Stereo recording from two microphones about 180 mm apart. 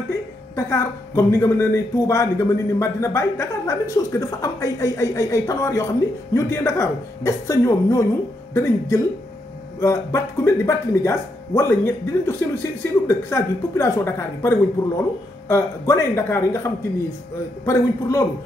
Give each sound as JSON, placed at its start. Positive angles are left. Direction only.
{"t": 0.6, "sound": "a woman's voice", "side_deg": 15}